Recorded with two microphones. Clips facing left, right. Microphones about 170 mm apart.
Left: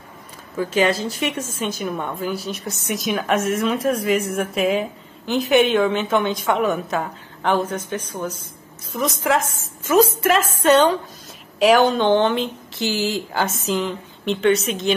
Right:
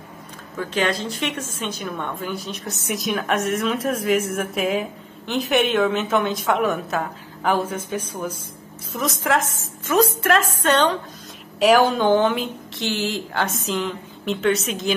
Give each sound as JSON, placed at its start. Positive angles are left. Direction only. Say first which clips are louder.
{"t": 0.6, "sound": "a woman's voice", "louder": "left 4 dB", "side_deg": 5}
{"t": 11.6, "sound": "a woman's voice", "louder": "left 1 dB", "side_deg": -5}